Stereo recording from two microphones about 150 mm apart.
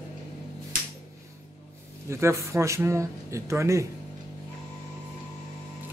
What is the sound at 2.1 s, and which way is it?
Speech, 15° right (ahead or behind).